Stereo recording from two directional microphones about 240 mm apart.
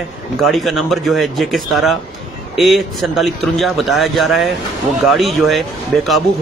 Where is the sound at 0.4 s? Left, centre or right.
Centre.